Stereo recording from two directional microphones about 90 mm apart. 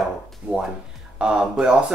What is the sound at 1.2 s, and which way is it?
Speech, 10° right (ahead or behind).